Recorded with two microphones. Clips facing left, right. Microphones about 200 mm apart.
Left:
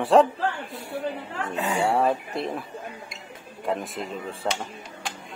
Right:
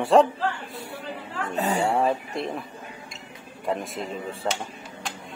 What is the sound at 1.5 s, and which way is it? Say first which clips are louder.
Speech: right 2 dB; 35° right (ahead or behind).